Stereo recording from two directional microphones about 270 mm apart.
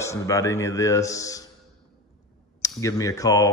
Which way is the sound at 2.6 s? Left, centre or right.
Centre.